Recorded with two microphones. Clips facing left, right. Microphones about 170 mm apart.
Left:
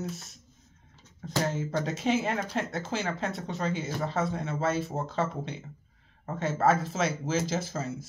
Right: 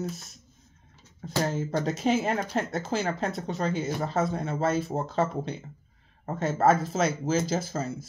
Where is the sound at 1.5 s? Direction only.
35° right (ahead or behind).